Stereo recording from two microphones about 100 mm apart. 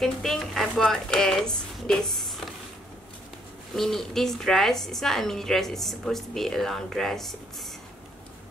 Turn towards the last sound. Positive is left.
turn(degrees=5)  # may be behind; listen again after turning